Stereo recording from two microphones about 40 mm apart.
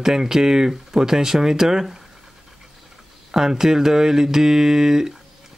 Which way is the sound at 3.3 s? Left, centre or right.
Centre.